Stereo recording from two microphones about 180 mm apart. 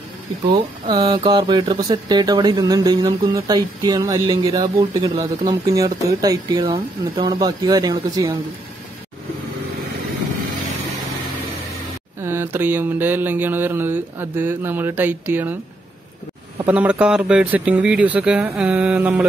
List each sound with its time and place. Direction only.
0.5 s speech: 25° right (ahead or behind)
12.2 s mantra: 15° right (ahead or behind)
16.6 s mantra: 5° right (ahead or behind)